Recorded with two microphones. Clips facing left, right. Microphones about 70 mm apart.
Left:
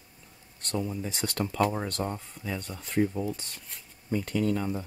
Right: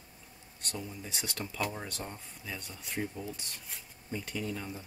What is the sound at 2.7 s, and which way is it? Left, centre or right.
Speech, left.